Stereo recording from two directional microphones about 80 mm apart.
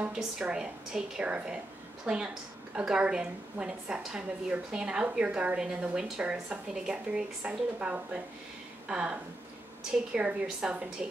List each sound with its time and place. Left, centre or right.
0.0 s a woman's voice: centre